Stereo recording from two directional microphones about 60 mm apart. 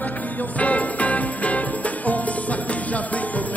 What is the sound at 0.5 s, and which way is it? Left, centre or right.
Music, left.